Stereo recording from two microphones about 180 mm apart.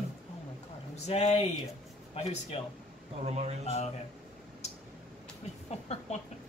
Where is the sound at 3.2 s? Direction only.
35° right (ahead or behind).